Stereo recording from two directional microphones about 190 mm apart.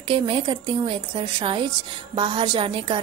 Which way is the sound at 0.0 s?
25° right (ahead or behind).